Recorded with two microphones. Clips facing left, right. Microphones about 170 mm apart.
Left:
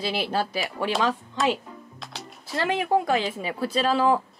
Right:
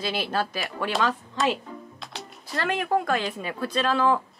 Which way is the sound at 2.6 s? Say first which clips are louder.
Left 2 dB; 15° left (ahead or behind).